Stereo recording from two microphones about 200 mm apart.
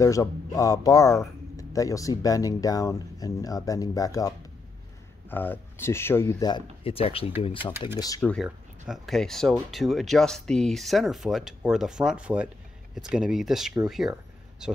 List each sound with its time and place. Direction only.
0.0 s a man's voice: 15° left (ahead or behind)
5.3 s speech: 10° left (ahead or behind); by 7.7 s 25° left (ahead or behind)
8.2 s speech: centre (ahead or behind)